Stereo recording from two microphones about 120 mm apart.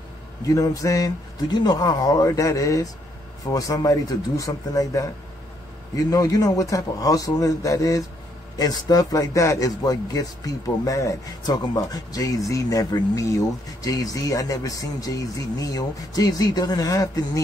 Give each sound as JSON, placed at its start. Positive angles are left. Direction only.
{"t": 0.5, "sound": "speech", "side_deg": 30}